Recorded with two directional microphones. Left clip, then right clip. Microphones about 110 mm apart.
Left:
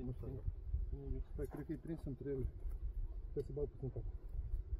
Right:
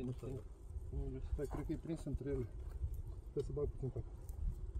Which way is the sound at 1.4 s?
15° right (ahead or behind).